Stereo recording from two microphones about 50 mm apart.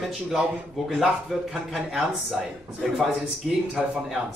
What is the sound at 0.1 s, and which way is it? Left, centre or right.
Speech, centre.